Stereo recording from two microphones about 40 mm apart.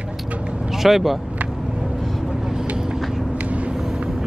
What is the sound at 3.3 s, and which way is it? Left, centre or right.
Vehicle, right.